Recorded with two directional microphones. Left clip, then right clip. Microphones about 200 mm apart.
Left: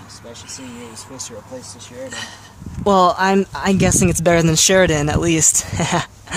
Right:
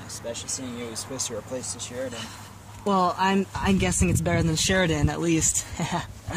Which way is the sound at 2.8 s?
40° left (ahead or behind).